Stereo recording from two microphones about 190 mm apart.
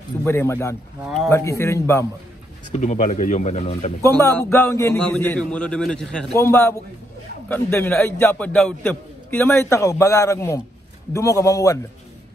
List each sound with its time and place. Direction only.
0.2 s a man's voice: 10° left (ahead or behind)
1.0 s a man's voice: centre (ahead or behind)
1.3 s a man's voice: 15° left (ahead or behind)
2.7 s speech: 40° left (ahead or behind)
4.0 s a man's voice: 10° left (ahead or behind)
6.3 s a man's voice: 15° left (ahead or behind)